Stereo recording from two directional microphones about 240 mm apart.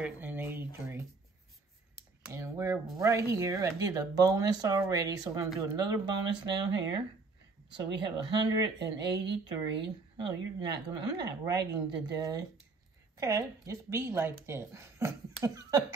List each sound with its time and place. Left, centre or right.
0.0 s speech: centre
2.2 s speech: centre